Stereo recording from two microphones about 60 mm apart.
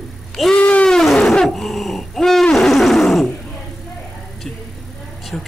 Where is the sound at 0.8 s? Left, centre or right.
Centre.